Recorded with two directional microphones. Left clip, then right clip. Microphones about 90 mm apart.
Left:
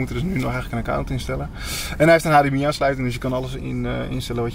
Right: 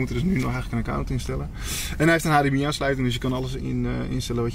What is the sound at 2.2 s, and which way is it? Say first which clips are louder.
Speech: left 5 dB; centre (ahead or behind).